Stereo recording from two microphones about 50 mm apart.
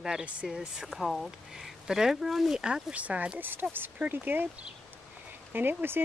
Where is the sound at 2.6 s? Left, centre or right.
Right.